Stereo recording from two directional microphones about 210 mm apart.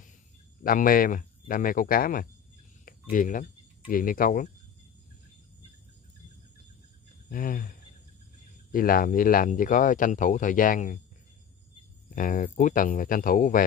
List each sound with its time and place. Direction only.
0.7 s speech: 40° left (ahead or behind)
7.2 s speech: 40° left (ahead or behind)
8.7 s speech: 40° left (ahead or behind)
12.2 s speech: 40° left (ahead or behind)